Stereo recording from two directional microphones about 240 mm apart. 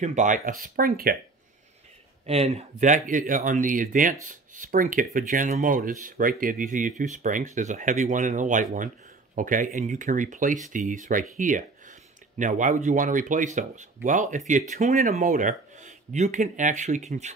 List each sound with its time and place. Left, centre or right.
0.0 s speech: right
2.2 s speech: right